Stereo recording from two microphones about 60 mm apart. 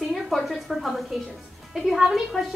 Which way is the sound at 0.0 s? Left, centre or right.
Centre.